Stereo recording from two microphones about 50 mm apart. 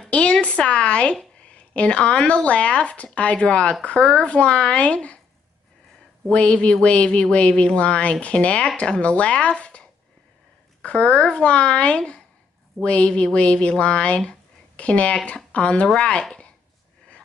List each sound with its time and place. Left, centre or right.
0.1 s a woman's voice: left
6.2 s speech: left